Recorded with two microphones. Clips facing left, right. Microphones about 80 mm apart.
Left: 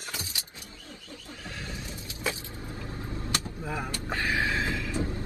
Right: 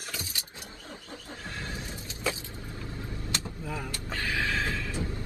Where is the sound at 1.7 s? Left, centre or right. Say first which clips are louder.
Right 1 dB; right.